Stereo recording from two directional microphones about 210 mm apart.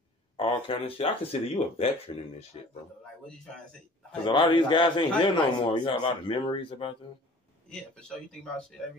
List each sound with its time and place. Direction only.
0.4 s a man's voice: 25° left (ahead or behind)
4.3 s a man's voice: 25° left (ahead or behind)
7.9 s speech: 5° left (ahead or behind)